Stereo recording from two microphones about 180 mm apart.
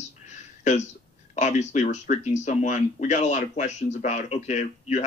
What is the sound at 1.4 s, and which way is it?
Speech, 40° left (ahead or behind).